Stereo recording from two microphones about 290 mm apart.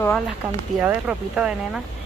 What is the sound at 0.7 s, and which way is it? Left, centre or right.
Speech, centre.